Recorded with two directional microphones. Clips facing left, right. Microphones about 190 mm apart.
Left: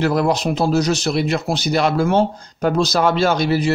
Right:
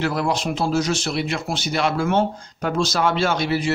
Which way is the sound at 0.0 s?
40° left (ahead or behind).